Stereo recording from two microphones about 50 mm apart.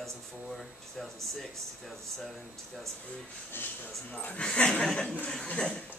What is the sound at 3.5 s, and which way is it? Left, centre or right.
Speech, left.